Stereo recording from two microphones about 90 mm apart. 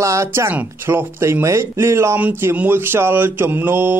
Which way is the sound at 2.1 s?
15° right (ahead or behind).